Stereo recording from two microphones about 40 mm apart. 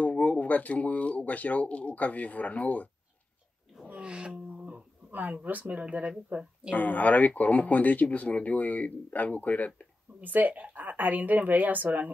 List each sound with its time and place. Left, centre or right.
0.2 s speech: left
3.9 s a sound: right
4.5 s guitar: right
5.1 s a woman's voice: right
6.7 s speech: left
10.2 s a woman's voice: right